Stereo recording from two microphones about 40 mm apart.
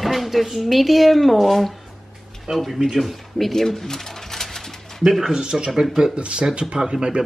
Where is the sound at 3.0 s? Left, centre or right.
Centre.